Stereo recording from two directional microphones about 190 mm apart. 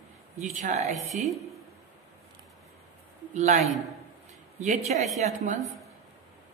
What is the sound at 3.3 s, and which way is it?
A woman's voice, 40° right (ahead or behind).